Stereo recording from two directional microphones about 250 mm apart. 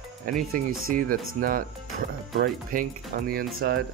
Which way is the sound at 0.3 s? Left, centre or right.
Right.